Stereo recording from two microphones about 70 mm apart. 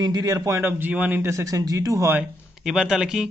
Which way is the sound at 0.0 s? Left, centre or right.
Right.